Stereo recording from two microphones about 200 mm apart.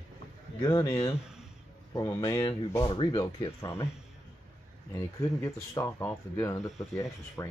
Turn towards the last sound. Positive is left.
turn(degrees=15)  # may be behind; listen again after turning